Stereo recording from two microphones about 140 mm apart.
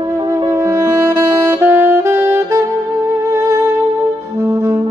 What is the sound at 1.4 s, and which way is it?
Saxophone, 15° right (ahead or behind).